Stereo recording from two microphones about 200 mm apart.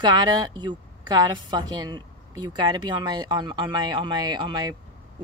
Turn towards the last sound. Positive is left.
turn(degrees=-20)  # may be behind; listen again after turning